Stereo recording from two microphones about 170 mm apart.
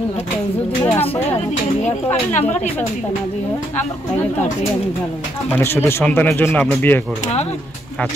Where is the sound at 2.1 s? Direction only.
40° left (ahead or behind).